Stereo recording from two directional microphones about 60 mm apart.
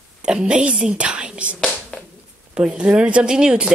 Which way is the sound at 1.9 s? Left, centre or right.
Centre.